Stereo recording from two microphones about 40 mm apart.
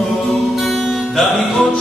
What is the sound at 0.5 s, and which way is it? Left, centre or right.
Music, centre.